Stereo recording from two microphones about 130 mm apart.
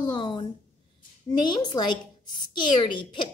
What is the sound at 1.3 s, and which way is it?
A woman's voice, 30° left (ahead or behind).